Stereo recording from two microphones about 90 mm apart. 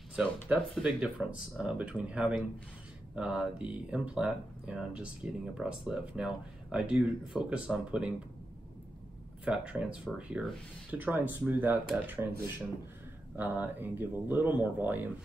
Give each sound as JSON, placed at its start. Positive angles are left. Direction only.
{"t": 0.1, "sound": "speech", "side_deg": -10}
{"t": 9.4, "sound": "speech", "side_deg": -10}